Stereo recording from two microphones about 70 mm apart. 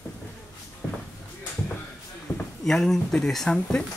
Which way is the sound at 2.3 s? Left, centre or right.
Left.